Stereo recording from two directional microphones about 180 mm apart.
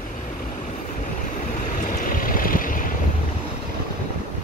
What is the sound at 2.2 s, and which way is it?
Vehicle, 50° left (ahead or behind).